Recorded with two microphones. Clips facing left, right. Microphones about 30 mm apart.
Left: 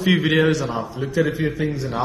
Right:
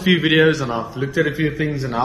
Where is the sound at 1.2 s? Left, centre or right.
Right.